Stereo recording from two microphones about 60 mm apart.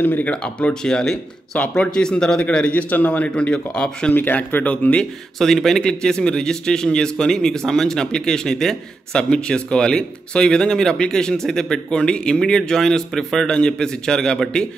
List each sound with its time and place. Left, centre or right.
0.0 s a man's voice: left; by 2.4 s centre
2.7 s speech: left
4.1 s speech: left
5.4 s a man's voice: centre